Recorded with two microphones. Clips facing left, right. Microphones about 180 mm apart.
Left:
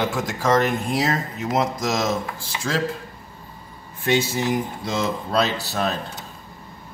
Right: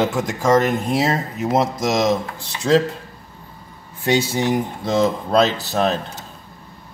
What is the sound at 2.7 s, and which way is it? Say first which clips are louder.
Speech: right 9 dB; 30° right (ahead or behind).